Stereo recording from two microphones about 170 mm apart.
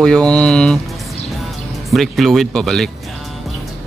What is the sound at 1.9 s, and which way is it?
Speech, centre (ahead or behind).